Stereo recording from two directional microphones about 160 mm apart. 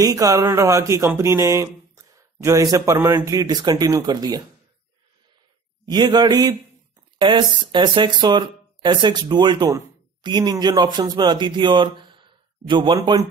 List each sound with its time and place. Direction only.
0.0 s speech: 20° right (ahead or behind)
5.9 s speech: 25° right (ahead or behind)